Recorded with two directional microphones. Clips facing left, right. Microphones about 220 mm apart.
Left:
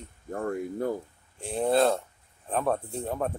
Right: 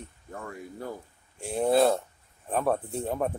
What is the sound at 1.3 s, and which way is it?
Speech, centre (ahead or behind).